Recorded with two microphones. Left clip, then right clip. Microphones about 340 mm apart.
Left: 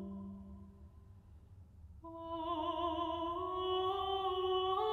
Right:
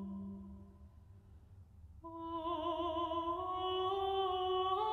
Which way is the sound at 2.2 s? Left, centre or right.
Right.